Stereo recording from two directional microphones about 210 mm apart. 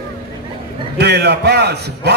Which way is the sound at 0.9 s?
55° right (ahead or behind).